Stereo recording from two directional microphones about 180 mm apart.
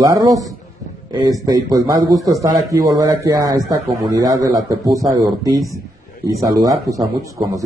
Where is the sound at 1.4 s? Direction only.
20° right (ahead or behind).